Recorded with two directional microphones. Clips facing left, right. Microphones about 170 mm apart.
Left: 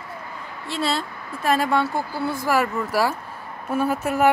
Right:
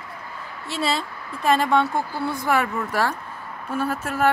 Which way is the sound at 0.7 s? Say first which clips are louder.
Even; centre (ahead or behind).